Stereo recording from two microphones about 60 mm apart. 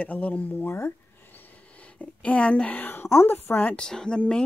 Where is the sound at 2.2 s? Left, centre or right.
Left.